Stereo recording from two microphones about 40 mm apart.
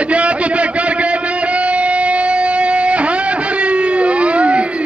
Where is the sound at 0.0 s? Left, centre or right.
Right.